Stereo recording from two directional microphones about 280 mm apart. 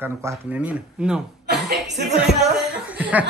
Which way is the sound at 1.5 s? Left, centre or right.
Right.